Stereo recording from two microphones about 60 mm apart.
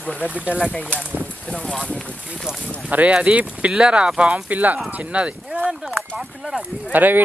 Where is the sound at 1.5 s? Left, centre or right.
Centre.